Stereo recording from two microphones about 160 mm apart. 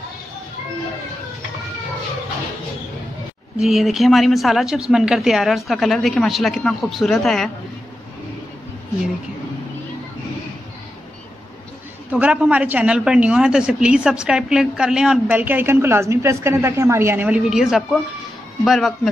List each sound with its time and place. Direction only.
3.5 s speech: centre (ahead or behind)
12.1 s a woman's voice: 10° right (ahead or behind)